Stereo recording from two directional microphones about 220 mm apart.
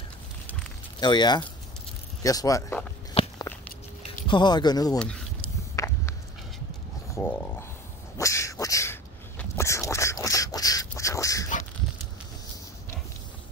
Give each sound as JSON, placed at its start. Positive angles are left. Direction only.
{"t": 1.0, "sound": "speech", "side_deg": 20}
{"t": 3.2, "sound": "walk", "side_deg": 30}
{"t": 4.3, "sound": "speech", "side_deg": 20}
{"t": 4.9, "sound": "a sound", "side_deg": 5}
{"t": 7.2, "sound": "speech", "side_deg": 10}
{"t": 8.2, "sound": "a sound", "side_deg": 15}